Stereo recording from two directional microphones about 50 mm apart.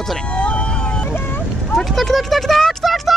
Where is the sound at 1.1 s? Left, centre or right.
Left.